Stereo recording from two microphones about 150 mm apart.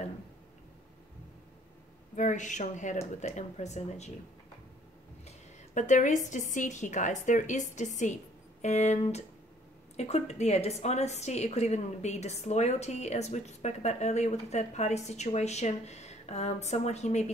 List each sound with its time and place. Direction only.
2.1 s a woman's voice: 55° left (ahead or behind)
5.8 s a woman's voice: 55° left (ahead or behind)